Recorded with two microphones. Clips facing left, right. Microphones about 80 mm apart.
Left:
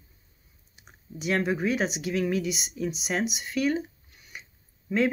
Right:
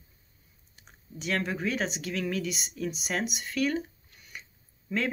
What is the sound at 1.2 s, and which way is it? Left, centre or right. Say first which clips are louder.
Speech: left 4 dB; centre.